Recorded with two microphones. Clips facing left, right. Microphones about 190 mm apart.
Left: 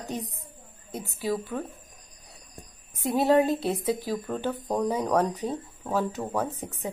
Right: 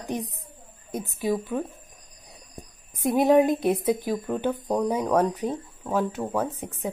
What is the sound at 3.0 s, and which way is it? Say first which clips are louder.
A woman's voice: right 3 dB; 15° right (ahead or behind).